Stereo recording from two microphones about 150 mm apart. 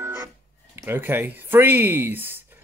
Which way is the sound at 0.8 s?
15° right (ahead or behind).